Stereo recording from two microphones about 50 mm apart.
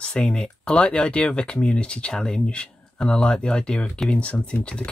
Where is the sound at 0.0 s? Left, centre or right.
Centre.